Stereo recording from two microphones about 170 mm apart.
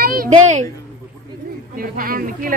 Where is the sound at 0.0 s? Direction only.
60° right (ahead or behind).